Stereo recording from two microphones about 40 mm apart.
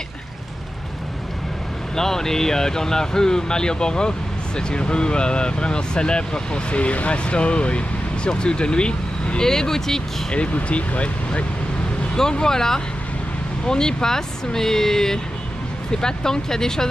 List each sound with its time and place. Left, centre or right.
2.0 s speech: centre
9.4 s speech: centre
10.3 s speech: left
12.2 s speech: centre